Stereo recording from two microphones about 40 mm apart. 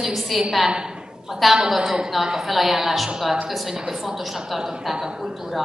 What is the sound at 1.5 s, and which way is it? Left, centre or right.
A woman's voice, centre.